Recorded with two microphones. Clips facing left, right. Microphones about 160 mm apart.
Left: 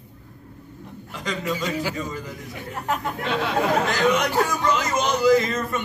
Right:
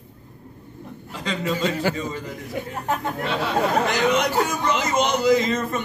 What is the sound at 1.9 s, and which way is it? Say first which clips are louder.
Speech: right 2 dB; 25° right (ahead or behind).